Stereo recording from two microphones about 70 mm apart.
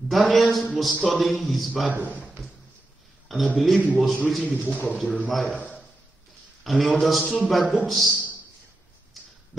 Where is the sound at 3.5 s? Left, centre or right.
Centre.